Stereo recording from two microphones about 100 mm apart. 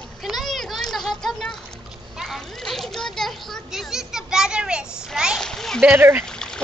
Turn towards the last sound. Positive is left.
turn(degrees=5)  # may be behind; listen again after turning